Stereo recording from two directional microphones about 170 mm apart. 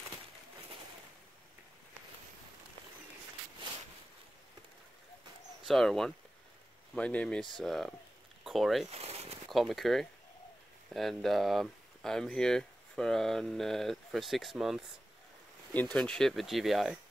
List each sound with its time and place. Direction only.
5.7 s speech: centre (ahead or behind)
8.9 s a sound: 35° right (ahead or behind)
9.5 s speech: centre (ahead or behind)
15.7 s speech: 10° left (ahead or behind)